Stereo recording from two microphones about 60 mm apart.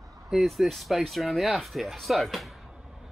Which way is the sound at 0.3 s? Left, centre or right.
Centre.